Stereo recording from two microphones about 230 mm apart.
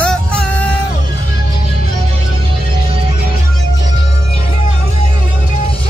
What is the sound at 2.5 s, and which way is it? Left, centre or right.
Music, right.